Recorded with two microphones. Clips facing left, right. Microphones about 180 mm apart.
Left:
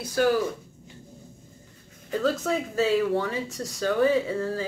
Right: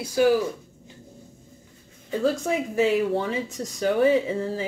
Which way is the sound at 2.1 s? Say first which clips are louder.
Right 2 dB; 10° right (ahead or behind).